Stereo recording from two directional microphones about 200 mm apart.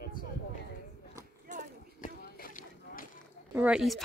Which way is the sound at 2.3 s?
45° left (ahead or behind).